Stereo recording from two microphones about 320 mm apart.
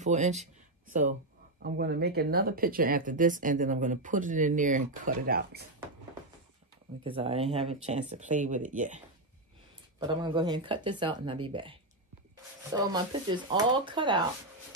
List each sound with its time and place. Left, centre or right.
0.0 s speech: right
1.6 s speech: right
7.0 s speech: centre
12.7 s speech: centre